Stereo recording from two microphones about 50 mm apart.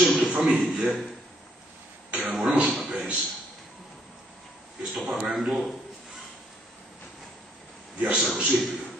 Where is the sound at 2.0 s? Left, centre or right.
Right.